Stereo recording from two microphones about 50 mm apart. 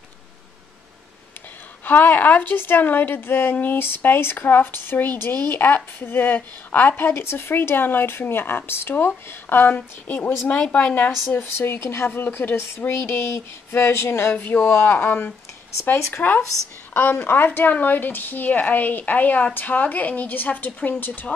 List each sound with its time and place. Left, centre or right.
1.9 s a woman's voice: left
9.8 s a woman's voice: left
11.3 s speech: left
14.3 s a woman's voice: left
15.8 s speech: left
16.1 s a woman's voice: left
17.5 s a woman's voice: left